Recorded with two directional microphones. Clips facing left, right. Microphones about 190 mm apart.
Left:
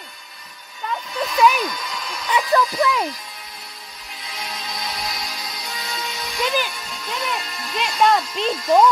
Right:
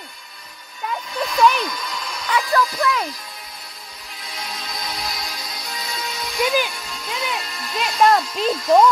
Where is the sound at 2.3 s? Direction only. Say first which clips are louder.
Left 1 dB; 20° left (ahead or behind).